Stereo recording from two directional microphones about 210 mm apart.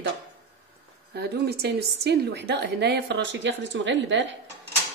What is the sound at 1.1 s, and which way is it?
A woman's voice, 50° right (ahead or behind).